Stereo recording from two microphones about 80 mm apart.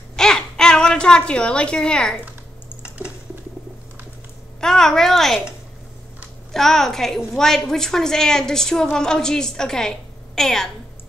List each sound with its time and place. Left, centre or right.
0.1 s babbling: centre
3.0 s a sound: right
4.6 s a child's voice: centre
6.5 s a child's voice: centre